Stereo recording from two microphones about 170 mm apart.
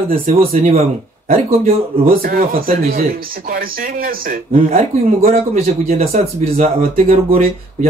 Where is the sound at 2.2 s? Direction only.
60° right (ahead or behind).